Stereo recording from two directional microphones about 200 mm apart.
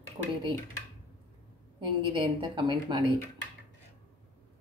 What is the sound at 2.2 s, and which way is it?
A woman's voice, 25° right (ahead or behind).